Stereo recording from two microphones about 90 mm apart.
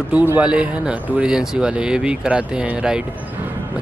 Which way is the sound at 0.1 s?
20° right (ahead or behind).